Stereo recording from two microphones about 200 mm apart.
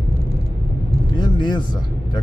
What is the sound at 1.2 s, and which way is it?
Speech, 20° left (ahead or behind).